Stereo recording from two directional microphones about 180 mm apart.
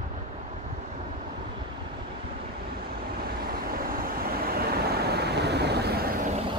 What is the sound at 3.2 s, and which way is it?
Vehicle, 55° right (ahead or behind).